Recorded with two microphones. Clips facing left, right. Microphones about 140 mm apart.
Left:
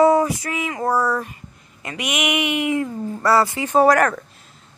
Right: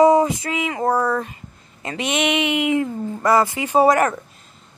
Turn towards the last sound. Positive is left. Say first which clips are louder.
# even
turn(degrees=-5)  # may be behind; listen again after turning